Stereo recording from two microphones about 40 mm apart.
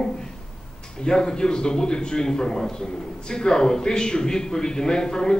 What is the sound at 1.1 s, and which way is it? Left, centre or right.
A man's voice, centre.